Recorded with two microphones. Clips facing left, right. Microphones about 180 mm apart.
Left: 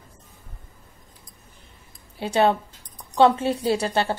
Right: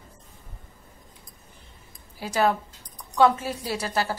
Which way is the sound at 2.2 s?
30° left (ahead or behind).